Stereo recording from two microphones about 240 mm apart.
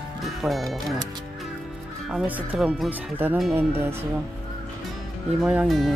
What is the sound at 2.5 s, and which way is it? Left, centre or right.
Speech, centre.